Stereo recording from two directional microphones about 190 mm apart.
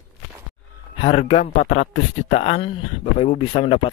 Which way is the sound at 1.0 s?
35° left (ahead or behind).